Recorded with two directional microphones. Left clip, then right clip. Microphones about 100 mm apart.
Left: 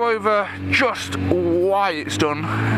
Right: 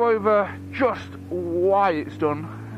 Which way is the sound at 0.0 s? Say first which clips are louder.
Even; 15° left (ahead or behind).